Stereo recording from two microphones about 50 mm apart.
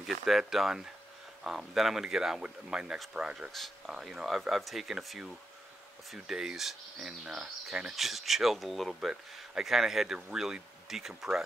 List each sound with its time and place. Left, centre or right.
0.0 s speech: centre
3.5 s speech: centre